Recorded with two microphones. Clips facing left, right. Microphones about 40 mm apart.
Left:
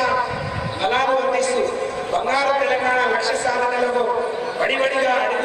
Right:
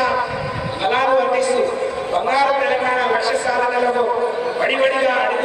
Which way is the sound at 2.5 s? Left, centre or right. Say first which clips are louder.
Right 1 dB; centre.